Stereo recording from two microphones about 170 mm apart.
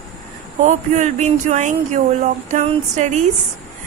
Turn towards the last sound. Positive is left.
turn(degrees=-45)  # may be behind; listen again after turning